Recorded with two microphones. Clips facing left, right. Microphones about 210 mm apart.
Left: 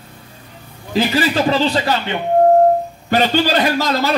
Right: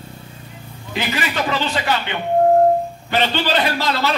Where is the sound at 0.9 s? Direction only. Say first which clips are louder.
Left 7 dB; 35° left (ahead or behind).